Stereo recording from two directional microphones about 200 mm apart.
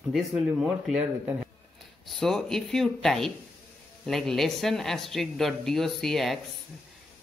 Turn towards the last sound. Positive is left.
turn(degrees=0)  # may be behind; listen again after turning